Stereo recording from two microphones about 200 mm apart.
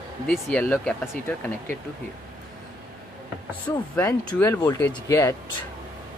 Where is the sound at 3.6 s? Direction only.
10° left (ahead or behind).